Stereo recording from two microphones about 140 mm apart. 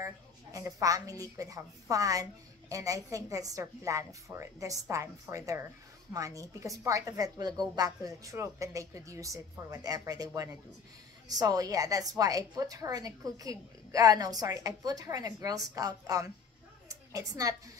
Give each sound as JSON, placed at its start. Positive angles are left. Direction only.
{"t": 0.0, "sound": "a woman's voice", "side_deg": -25}